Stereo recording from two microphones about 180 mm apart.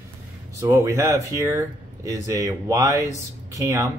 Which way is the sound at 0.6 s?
15° right (ahead or behind).